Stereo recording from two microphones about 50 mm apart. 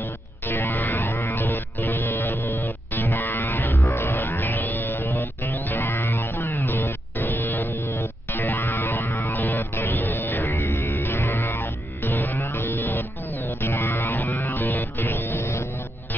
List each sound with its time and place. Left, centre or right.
0.5 s music: left
6.2 s music: left
8.3 s music: left
10.5 s music: left
10.9 s music: left
12.4 s music: left